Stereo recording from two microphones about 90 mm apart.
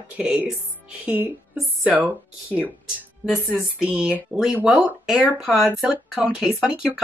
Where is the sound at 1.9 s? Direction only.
5° right (ahead or behind).